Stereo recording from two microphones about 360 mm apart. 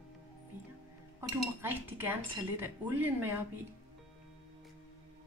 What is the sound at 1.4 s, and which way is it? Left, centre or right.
Dishes, centre.